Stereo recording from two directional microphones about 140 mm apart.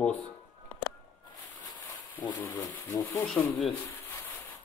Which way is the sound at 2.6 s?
25° left (ahead or behind).